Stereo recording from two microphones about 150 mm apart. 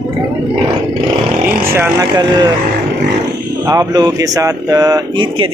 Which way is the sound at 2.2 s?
30° right (ahead or behind).